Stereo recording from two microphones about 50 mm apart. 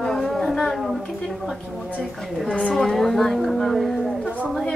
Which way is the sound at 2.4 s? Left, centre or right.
Centre.